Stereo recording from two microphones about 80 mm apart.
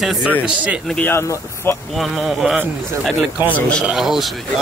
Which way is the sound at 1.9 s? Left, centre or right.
Centre.